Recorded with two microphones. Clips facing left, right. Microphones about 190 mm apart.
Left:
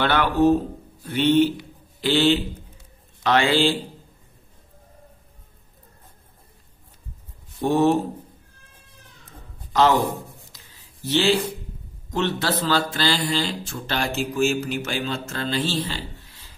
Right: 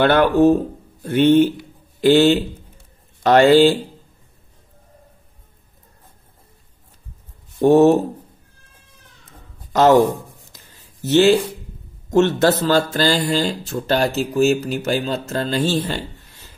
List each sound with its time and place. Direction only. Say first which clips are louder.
0.0 s speech: right 6 dB; 50° right (ahead or behind)
7.5 s speech: right 8 dB; 45° right (ahead or behind)
9.7 s a sound: right 5 dB; 45° right (ahead or behind)
11.1 s speech: right 7 dB; 50° right (ahead or behind)